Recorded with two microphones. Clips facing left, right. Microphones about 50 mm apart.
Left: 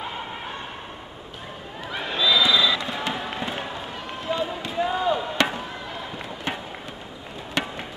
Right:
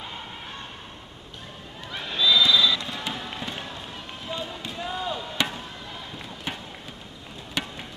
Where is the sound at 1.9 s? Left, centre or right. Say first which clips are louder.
Left 1 dB; centre.